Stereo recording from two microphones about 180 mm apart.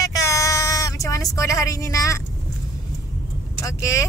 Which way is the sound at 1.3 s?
20° left (ahead or behind).